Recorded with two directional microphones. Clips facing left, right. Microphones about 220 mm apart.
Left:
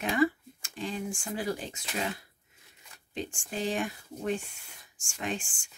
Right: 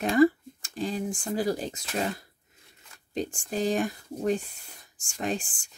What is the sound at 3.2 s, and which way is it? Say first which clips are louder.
Speech: right 5 dB; 40° right (ahead or behind).